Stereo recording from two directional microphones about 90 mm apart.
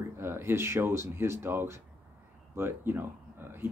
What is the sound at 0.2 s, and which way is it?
Speech, 25° right (ahead or behind).